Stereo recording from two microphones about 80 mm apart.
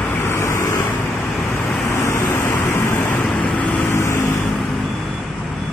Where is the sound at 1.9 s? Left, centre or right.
Left.